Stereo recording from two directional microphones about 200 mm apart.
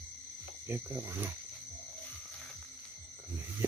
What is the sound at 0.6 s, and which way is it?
Speech, 10° right (ahead or behind).